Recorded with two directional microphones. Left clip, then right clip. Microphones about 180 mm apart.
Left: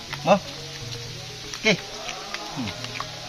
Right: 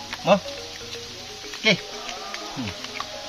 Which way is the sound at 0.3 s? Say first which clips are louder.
Even; 5° right (ahead or behind).